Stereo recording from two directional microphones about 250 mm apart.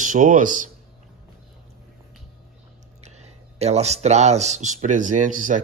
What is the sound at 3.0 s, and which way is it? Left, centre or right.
Speech, right.